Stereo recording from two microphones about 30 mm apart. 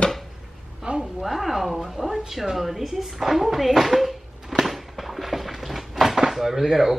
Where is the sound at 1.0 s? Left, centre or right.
Centre.